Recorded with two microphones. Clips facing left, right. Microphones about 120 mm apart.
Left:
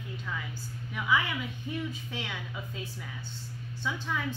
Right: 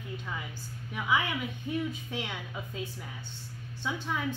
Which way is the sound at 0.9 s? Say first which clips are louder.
Even; 15° right (ahead or behind).